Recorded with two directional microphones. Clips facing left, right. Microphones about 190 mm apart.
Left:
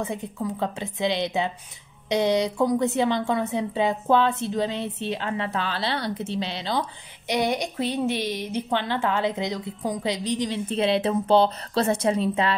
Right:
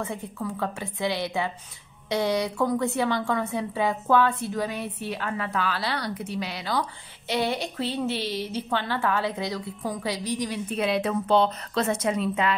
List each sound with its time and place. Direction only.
0.0 s a woman's voice: 20° left (ahead or behind)